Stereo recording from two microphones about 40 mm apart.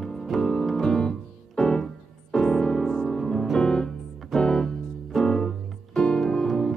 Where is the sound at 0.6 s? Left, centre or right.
Centre.